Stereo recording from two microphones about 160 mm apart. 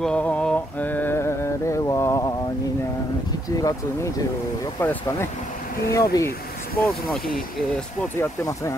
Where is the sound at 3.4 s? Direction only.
20° left (ahead or behind).